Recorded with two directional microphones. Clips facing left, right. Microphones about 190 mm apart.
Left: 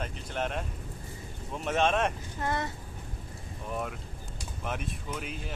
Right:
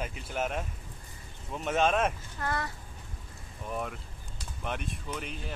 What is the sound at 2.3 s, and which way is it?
Speech, 20° left (ahead or behind).